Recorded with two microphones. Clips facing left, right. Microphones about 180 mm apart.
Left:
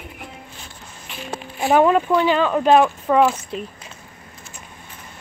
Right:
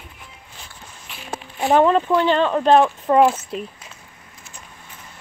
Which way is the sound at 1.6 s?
10° left (ahead or behind).